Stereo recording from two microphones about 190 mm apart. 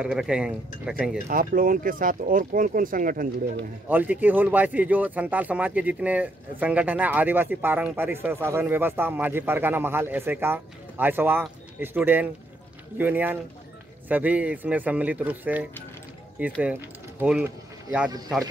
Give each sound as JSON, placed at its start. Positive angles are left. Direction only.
{"t": 0.0, "sound": "speech", "side_deg": -5}
{"t": 1.2, "sound": "speech", "side_deg": -45}
{"t": 3.9, "sound": "speech", "side_deg": -10}